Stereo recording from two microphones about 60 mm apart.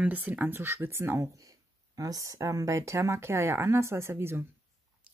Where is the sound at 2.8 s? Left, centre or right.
Right.